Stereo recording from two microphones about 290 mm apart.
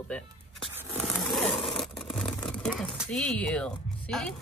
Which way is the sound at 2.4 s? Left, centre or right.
Centre.